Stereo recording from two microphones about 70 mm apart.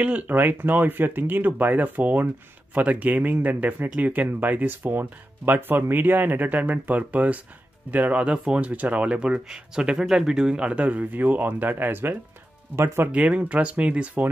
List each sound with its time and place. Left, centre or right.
0.0 s speech: right
13.1 s speech: right